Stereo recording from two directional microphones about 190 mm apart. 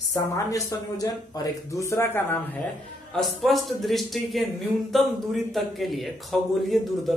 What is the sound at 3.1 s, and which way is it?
A man's voice, centre (ahead or behind).